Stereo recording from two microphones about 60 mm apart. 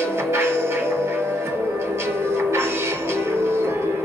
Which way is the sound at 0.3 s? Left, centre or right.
Right.